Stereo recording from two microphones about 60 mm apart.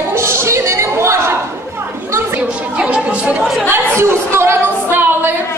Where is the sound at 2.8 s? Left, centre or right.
Centre.